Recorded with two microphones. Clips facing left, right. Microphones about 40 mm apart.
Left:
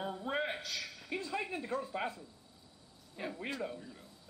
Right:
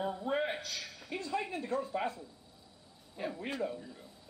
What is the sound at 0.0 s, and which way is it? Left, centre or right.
Speech, centre.